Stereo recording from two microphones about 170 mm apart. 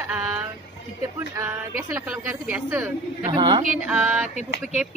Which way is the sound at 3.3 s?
25° right (ahead or behind).